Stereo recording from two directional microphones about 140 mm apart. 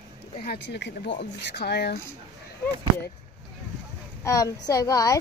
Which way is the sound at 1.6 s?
90° left.